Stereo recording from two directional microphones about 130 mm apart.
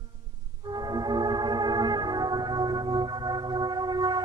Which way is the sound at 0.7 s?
30° right (ahead or behind).